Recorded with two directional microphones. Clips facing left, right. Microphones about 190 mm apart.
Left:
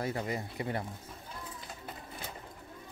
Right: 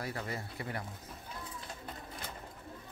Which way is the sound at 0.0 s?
20° left (ahead or behind).